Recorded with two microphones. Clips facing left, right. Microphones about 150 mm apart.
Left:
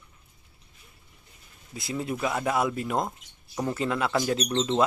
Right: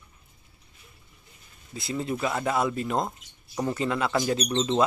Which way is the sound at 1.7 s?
10° left (ahead or behind).